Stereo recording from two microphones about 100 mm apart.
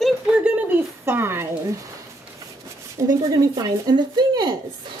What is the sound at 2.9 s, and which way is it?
Speech, 40° right (ahead or behind).